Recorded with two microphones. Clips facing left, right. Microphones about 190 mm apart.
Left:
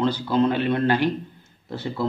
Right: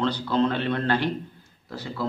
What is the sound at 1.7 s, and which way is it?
Speech, 25° left (ahead or behind).